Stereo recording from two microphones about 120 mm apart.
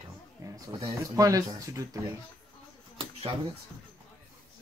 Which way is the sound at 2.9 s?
45° right (ahead or behind).